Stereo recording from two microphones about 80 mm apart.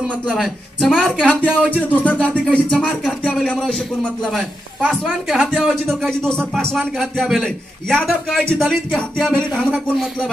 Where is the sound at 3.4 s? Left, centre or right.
Centre.